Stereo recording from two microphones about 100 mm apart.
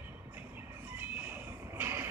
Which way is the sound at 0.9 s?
20° right (ahead or behind).